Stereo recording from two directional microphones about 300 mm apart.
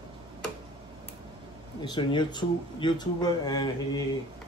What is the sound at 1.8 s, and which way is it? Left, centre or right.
Speech, centre.